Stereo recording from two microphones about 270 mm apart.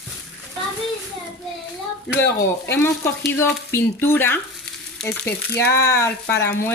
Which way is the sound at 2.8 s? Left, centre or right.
Centre.